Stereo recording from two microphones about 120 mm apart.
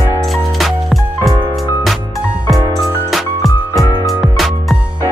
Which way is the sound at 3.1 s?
Centre (ahead or behind).